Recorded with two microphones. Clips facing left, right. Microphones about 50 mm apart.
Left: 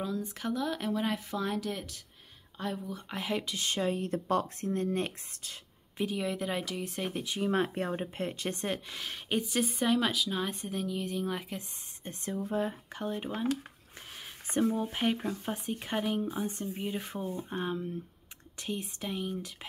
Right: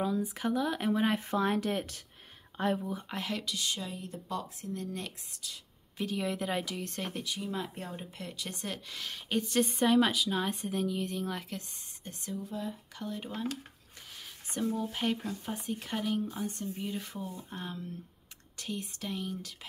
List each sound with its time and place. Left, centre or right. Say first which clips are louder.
0.0 s speech: right 3 dB; centre
1.1 s speech: right 4 dB; right
3.1 s a woman's voice: left 5 dB; centre
3.3 s speech: left 3 dB; left
6.1 s a woman's voice: right 2 dB; centre
7.4 s speech: left 8 dB; left
8.7 s speech: left 2 dB; centre
9.4 s a woman's voice: right 4 dB; centre
12.0 s speech: left 4 dB; left; by 19.5 s centre